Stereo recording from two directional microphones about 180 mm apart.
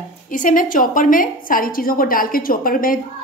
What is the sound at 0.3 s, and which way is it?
A woman's voice, 45° left (ahead or behind).